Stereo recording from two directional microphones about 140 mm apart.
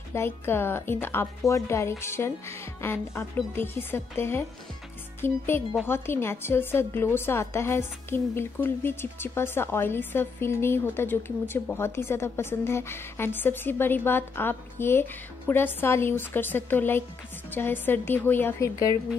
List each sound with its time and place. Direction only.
0.1 s a woman's voice: 15° left (ahead or behind)